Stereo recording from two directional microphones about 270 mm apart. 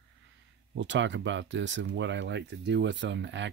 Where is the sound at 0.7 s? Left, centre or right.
Right.